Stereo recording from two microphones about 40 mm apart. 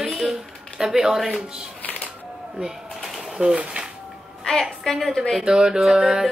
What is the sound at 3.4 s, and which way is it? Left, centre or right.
Speech, centre.